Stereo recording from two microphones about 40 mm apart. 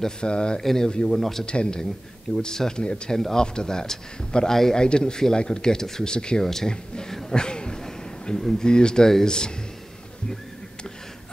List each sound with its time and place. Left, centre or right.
0.2 s speech: left
0.6 s speech: centre
0.8 s speech: left
3.2 s speech: centre
6.4 s speech: centre
7.2 s a sound: left
8.5 s speech: left